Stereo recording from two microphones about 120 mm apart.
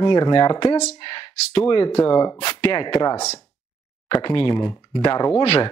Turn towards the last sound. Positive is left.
turn(degrees=45)  # may be behind; listen again after turning